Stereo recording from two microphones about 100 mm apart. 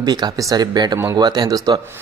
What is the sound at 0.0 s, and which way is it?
Speech, 45° right (ahead or behind).